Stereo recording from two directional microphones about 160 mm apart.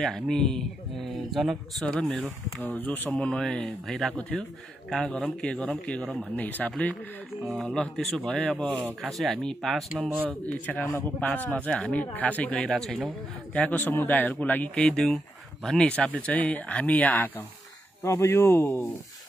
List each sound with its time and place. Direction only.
0.0 s speech: 5° left (ahead or behind)